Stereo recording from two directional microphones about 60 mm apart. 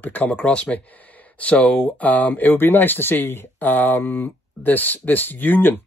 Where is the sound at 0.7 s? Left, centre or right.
Left.